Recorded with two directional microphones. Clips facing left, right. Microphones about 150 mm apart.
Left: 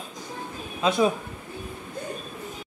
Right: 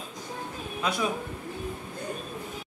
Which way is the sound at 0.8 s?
25° left (ahead or behind).